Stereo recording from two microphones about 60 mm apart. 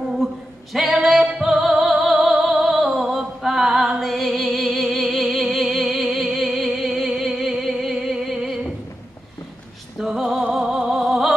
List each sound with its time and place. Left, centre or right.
0.7 s music: centre
9.9 s music: centre